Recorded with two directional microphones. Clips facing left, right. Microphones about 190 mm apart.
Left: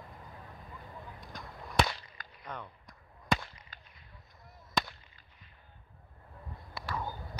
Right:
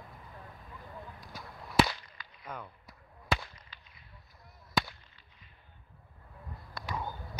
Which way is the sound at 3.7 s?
45° left (ahead or behind).